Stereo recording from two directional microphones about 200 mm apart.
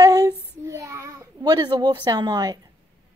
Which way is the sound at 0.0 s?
15° right (ahead or behind).